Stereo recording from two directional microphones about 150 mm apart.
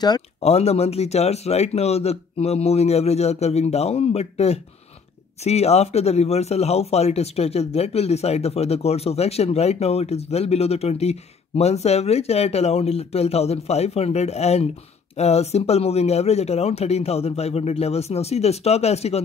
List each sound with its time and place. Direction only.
0.4 s speech: 45° left (ahead or behind)